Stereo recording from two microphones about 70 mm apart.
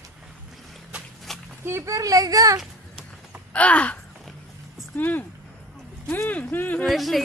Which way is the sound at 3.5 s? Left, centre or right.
Centre.